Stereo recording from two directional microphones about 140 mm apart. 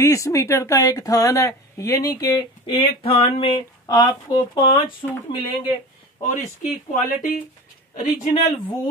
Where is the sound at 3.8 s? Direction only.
30° left (ahead or behind).